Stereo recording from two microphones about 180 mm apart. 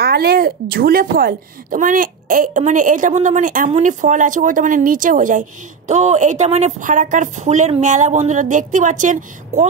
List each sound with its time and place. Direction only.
0.0 s a woman's voice: 60° right (ahead or behind); by 9.7 s 45° right (ahead or behind)